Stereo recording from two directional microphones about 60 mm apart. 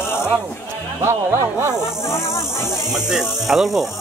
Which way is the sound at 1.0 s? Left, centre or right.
Right.